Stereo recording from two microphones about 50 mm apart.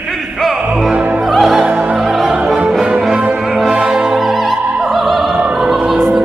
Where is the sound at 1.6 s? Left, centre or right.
Right.